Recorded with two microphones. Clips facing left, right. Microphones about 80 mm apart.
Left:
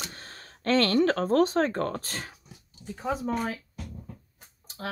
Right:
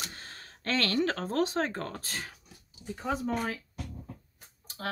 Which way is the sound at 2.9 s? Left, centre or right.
Centre.